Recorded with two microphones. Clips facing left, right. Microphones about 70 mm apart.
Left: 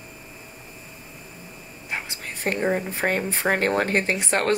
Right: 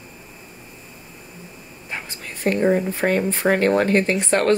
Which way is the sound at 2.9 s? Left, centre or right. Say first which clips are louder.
Right 4 dB; left.